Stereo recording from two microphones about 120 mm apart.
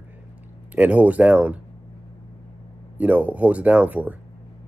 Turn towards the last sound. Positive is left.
turn(degrees=-10)  # may be behind; listen again after turning